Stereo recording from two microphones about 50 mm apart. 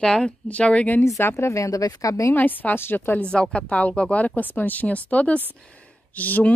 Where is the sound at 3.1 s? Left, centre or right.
Centre.